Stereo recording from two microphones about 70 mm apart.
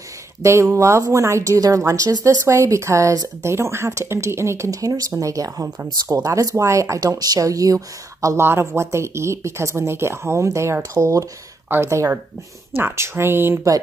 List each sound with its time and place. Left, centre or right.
0.4 s speech: right
2.4 s speech: right
8.4 s speech: right